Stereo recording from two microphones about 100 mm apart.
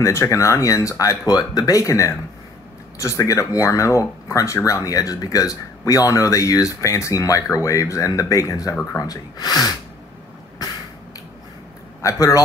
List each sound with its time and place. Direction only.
0.0 s speech: 30° left (ahead or behind)
12.0 s a man's voice: 35° left (ahead or behind)